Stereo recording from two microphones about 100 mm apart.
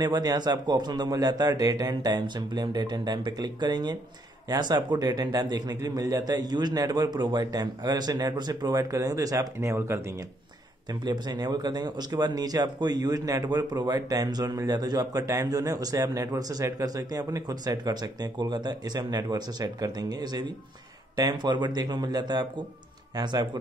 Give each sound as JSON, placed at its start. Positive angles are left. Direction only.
{"t": 0.0, "sound": "a man's voice", "side_deg": -40}
{"t": 10.9, "sound": "a man's voice", "side_deg": -45}